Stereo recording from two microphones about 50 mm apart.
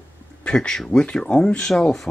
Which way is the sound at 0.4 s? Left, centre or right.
Centre.